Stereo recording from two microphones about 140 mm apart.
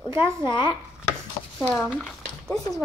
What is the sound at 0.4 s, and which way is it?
Speech, 35° left (ahead or behind).